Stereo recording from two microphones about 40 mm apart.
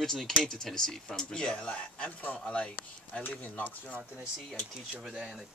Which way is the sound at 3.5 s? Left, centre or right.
Left.